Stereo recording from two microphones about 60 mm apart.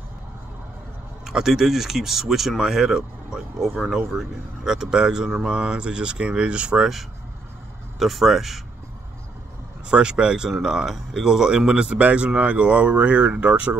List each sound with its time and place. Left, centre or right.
1.2 s speech: centre
8.0 s speech: centre
9.8 s speech: centre